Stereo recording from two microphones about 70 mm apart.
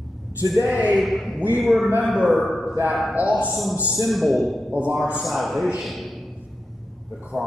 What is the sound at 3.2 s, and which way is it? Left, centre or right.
Speech, right.